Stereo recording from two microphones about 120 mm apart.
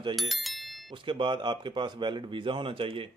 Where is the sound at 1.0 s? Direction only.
45° right (ahead or behind).